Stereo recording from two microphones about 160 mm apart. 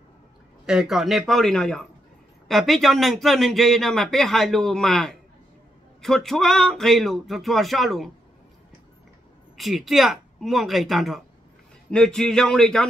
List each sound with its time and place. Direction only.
0.7 s speech: centre (ahead or behind)
9.6 s speech: centre (ahead or behind)